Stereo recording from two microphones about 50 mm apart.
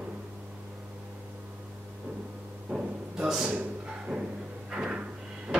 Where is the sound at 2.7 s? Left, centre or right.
Centre.